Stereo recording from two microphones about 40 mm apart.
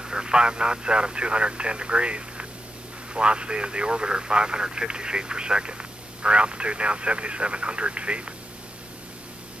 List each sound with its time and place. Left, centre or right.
0.0 s speech: centre